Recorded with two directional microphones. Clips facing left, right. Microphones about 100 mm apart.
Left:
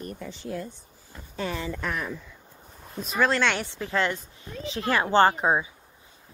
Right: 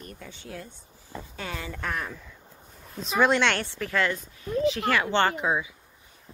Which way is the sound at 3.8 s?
25° left (ahead or behind).